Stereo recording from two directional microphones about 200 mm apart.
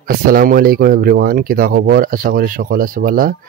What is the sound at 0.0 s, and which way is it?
Speech, 45° right (ahead or behind).